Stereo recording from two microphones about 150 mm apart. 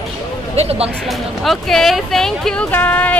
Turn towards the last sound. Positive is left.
turn(degrees=10)  # may be behind; listen again after turning